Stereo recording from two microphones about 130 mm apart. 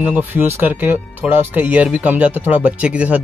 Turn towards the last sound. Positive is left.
turn(degrees=-10)  # may be behind; listen again after turning